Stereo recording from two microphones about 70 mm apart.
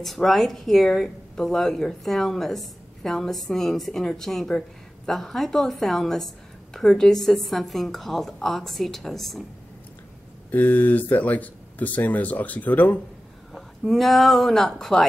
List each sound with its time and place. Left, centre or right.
0.0 s speech: centre
10.5 s speech: left
13.5 s speech: centre